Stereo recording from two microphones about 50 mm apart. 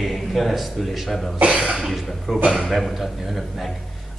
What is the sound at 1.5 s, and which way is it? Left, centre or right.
Cough, right.